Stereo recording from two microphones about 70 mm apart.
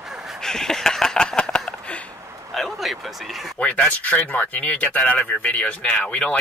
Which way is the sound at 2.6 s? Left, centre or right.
Centre.